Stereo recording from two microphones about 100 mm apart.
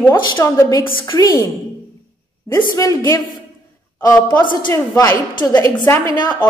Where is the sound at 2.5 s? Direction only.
35° left (ahead or behind).